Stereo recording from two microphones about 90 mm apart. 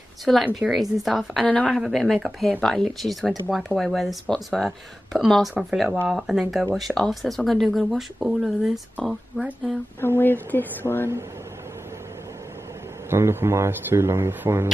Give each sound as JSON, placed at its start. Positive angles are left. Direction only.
{"t": 0.2, "sound": "speech", "side_deg": 0}
{"t": 9.9, "sound": "speech", "side_deg": 25}
{"t": 13.1, "sound": "speech", "side_deg": -25}